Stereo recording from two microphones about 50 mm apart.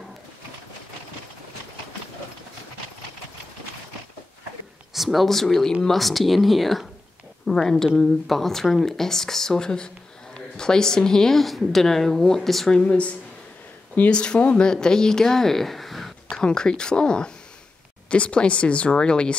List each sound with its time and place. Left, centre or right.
4.9 s a woman's voice: centre
12.7 s speech: left
14.1 s a woman's voice: centre
16.3 s a woman's voice: centre